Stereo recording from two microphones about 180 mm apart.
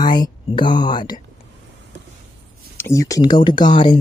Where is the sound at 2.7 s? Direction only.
15° left (ahead or behind).